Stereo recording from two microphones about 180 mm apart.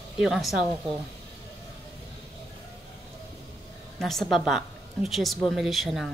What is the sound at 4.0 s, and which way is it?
A woman's voice, centre (ahead or behind).